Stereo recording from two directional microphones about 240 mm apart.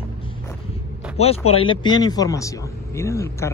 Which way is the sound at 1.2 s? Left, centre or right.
Left.